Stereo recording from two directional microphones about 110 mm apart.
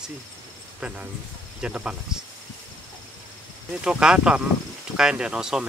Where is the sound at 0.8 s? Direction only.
15° right (ahead or behind).